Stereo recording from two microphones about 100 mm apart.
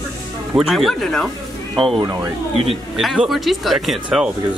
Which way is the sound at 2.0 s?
40° right (ahead or behind).